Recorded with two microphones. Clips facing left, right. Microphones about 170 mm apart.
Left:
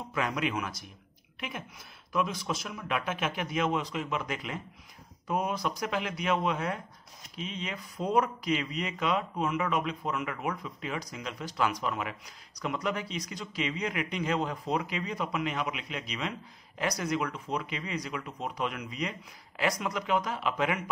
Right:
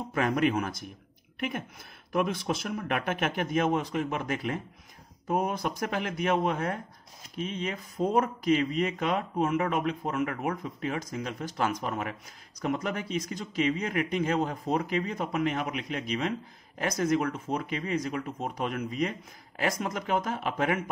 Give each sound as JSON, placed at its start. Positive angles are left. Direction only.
{"t": 0.1, "sound": "speech", "side_deg": -50}
{"t": 2.1, "sound": "speech", "side_deg": -55}